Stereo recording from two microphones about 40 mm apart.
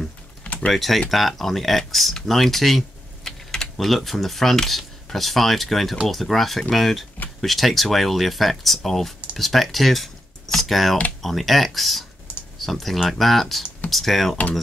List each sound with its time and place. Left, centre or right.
0.7 s speech: centre
3.3 s typing: centre
3.7 s speech: centre